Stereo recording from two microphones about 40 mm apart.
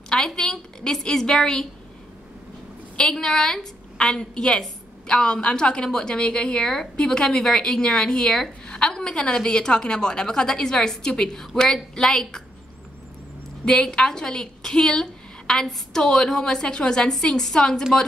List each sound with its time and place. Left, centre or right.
0.1 s a woman's voice: centre
3.2 s a woman's voice: centre
13.7 s a woman's voice: centre